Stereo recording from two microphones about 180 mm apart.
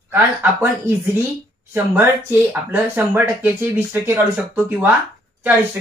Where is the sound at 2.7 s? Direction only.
10° right (ahead or behind).